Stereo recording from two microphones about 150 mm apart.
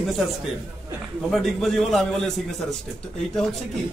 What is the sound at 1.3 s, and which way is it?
A man's voice, centre (ahead or behind).